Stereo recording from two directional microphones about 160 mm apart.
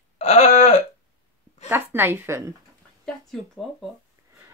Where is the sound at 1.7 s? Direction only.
15° right (ahead or behind).